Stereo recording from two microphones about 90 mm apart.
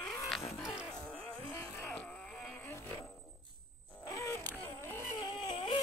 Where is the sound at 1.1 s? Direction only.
20° left (ahead or behind).